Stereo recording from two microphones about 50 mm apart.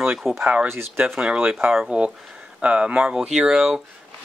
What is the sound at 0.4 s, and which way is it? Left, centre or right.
Speech, right.